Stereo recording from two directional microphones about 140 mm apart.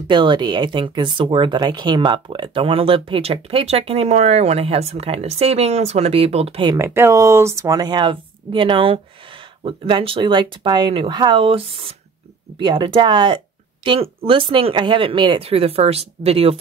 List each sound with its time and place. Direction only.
0.1 s speech: 35° right (ahead or behind)
6.8 s a woman's voice: 20° right (ahead or behind); by 16.5 s 45° right (ahead or behind)